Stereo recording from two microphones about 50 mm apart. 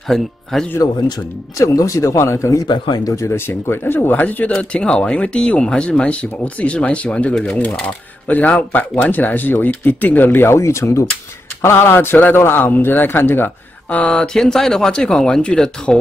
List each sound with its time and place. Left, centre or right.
0.1 s speech: centre
1.6 s speech: left
3.3 s a man's voice: left
4.6 s speech: left
10.5 s speech: left
11.6 s a man's voice: left
13.8 s speech: left
14.2 s speech: centre